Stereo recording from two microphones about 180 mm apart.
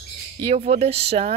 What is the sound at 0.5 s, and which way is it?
Speech, 35° right (ahead or behind).